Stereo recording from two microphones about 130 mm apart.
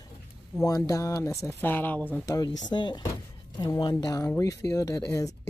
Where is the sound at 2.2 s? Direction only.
30° left (ahead or behind).